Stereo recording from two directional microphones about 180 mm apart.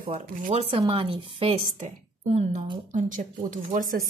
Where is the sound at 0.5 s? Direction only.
35° right (ahead or behind).